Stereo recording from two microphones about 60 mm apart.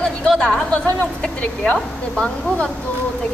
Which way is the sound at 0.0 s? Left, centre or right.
Centre.